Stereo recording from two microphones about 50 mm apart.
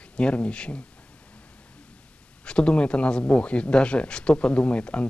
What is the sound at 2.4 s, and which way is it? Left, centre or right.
Speech, left.